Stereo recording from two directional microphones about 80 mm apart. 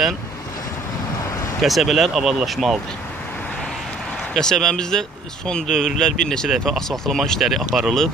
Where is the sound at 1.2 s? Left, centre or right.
Left.